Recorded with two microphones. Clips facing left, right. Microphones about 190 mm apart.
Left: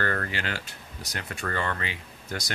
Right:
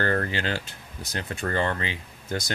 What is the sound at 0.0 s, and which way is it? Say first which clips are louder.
Speech: right 4 dB; 30° right (ahead or behind).